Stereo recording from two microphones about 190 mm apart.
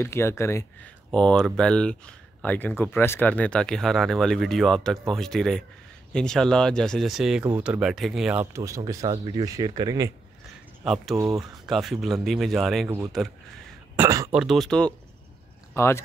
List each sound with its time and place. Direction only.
0.0 s speech: 15° left (ahead or behind); by 10.1 s 20° right (ahead or behind)
10.8 s speech: centre (ahead or behind)
13.9 s throat clearing: 15° right (ahead or behind)
14.3 s speech: centre (ahead or behind)